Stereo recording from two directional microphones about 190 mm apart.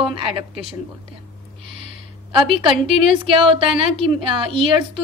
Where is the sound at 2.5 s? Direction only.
30° right (ahead or behind).